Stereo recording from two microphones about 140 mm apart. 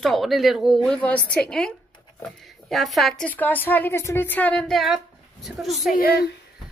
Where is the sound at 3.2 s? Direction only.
10° left (ahead or behind).